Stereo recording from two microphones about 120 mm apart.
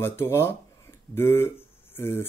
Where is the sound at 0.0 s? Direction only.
20° left (ahead or behind).